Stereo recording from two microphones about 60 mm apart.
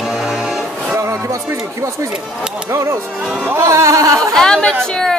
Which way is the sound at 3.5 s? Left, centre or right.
Right.